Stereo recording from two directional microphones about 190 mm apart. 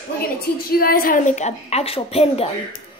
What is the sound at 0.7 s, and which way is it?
A woman's voice, 50° left (ahead or behind).